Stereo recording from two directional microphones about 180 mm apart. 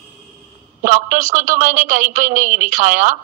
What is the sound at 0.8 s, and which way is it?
A man's voice, 45° right (ahead or behind).